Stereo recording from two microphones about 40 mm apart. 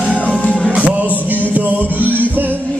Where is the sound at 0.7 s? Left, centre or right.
Right.